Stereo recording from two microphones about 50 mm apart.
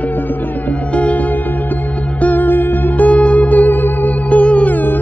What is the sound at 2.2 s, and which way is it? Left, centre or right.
Music, left.